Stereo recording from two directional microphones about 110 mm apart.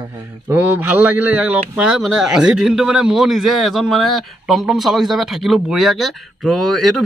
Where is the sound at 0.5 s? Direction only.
20° right (ahead or behind).